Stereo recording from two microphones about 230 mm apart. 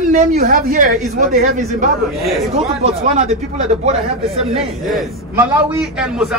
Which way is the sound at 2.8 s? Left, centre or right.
Right.